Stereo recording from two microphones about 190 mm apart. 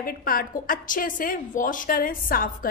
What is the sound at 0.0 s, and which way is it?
A woman's voice, 50° left (ahead or behind).